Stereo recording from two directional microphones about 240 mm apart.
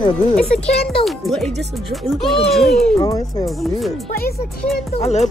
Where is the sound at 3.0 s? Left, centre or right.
Centre.